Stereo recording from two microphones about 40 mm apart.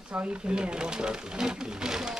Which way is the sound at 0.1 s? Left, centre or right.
Right.